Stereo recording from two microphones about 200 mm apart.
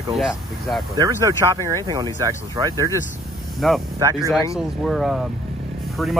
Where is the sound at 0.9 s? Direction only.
20° right (ahead or behind).